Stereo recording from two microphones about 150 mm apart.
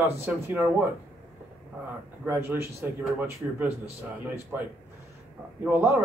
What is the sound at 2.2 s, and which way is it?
Speech, 15° right (ahead or behind).